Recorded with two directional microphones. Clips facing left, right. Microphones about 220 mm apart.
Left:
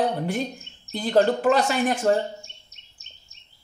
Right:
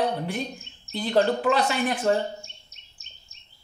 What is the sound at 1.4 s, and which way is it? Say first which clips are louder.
Speech: left 3 dB; 45° left (ahead or behind).